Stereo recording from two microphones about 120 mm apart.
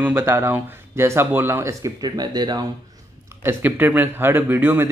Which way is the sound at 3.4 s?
15° right (ahead or behind).